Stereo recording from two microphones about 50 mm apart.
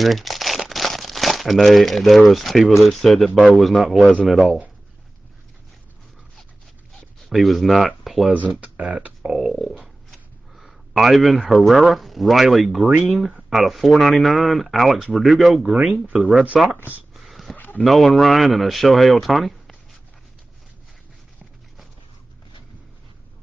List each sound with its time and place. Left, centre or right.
0.0 s speech: centre
7.2 s speech: centre
8.3 s speech: right
9.5 s speech: centre
15.6 s speech: centre
16.2 s speech: centre
17.1 s a sound: centre
17.8 s speech: centre